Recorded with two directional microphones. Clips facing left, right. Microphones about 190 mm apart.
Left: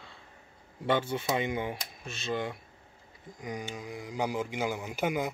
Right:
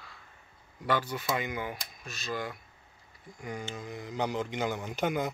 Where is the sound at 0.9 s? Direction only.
25° left (ahead or behind).